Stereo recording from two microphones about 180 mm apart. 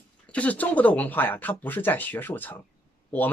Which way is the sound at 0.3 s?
10° left (ahead or behind).